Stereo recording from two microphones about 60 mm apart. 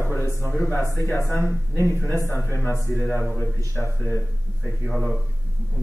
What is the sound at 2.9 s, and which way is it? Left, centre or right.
Speech, left.